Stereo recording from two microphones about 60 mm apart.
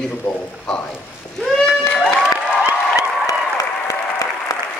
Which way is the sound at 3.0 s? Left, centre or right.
Left.